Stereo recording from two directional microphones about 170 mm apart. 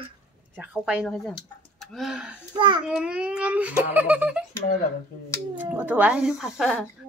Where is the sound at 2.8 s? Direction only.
5° right (ahead or behind).